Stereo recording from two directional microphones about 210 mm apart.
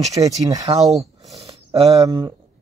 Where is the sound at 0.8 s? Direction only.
Centre (ahead or behind).